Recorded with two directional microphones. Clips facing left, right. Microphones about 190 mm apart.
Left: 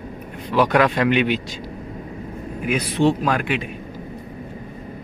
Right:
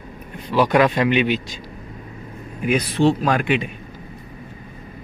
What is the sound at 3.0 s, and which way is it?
Speech, 15° left (ahead or behind).